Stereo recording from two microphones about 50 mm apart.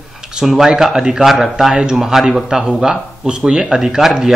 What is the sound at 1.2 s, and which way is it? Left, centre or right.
Speech, centre.